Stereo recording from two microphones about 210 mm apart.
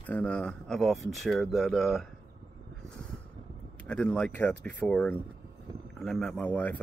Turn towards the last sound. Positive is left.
turn(degrees=5)  # may be behind; listen again after turning